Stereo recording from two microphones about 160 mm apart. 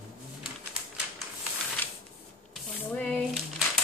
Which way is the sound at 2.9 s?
10° left (ahead or behind).